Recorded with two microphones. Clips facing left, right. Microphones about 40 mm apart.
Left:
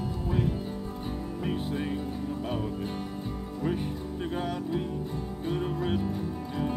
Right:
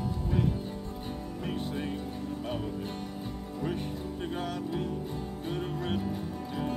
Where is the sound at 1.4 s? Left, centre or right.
Centre.